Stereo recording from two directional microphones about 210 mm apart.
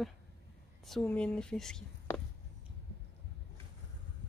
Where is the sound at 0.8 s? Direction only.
Centre (ahead or behind).